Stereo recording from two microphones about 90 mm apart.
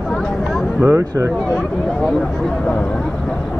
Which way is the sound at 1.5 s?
5° left (ahead or behind).